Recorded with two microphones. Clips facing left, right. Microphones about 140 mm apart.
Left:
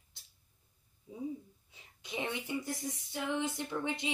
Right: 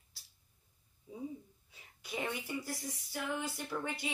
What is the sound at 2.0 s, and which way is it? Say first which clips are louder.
A woman's voice: left 1 dB; 20° left (ahead or behind).